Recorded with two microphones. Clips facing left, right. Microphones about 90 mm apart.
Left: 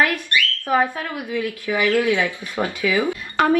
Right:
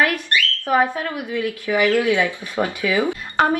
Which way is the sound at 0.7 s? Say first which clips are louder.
Right 2 dB; 20° right (ahead or behind).